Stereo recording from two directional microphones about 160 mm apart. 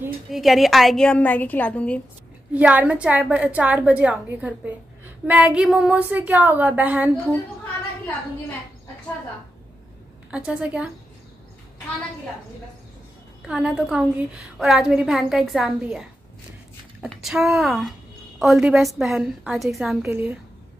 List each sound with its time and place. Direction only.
0.3 s a woman's voice: centre (ahead or behind)
2.5 s a woman's voice: 10° right (ahead or behind)
10.3 s a woman's voice: 10° right (ahead or behind)
13.5 s a woman's voice: 5° right (ahead or behind)
17.1 s a woman's voice: centre (ahead or behind)
20.1 s a woman's voice: 15° right (ahead or behind)